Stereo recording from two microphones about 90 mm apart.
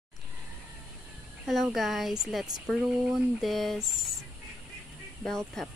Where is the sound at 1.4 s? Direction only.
Centre (ahead or behind).